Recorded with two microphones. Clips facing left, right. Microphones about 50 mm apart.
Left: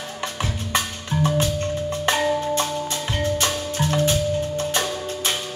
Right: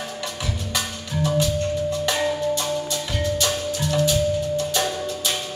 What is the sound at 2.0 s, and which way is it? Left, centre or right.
Marimba, left.